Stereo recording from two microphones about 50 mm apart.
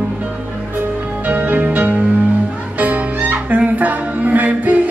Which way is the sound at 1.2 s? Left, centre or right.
Right.